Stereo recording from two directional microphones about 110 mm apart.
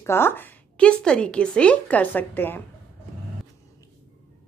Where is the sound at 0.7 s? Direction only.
10° left (ahead or behind).